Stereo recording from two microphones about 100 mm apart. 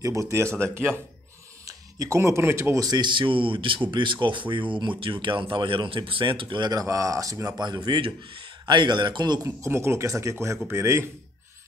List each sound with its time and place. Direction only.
0.0 s speech: 30° right (ahead or behind); by 9.4 s 45° right (ahead or behind)
9.4 s speech: 30° right (ahead or behind)